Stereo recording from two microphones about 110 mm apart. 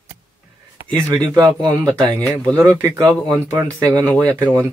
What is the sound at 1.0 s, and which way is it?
Speech, 35° right (ahead or behind).